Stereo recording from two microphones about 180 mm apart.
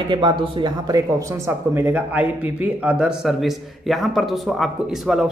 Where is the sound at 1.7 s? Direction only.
10° right (ahead or behind).